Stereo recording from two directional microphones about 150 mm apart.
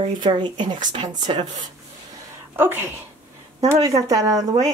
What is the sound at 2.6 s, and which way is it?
A woman's voice, 15° right (ahead or behind).